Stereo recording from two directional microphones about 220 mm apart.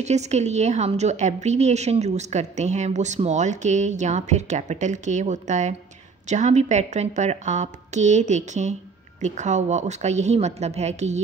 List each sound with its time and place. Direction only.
0.0 s a woman's voice: 30° right (ahead or behind)